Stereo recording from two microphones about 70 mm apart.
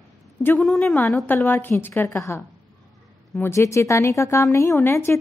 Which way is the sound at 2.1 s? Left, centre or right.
Left.